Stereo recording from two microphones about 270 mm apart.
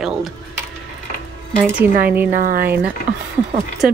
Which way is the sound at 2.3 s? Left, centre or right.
Right.